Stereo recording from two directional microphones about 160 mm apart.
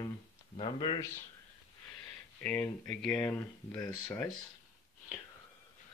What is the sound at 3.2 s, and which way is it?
Speech, 25° left (ahead or behind).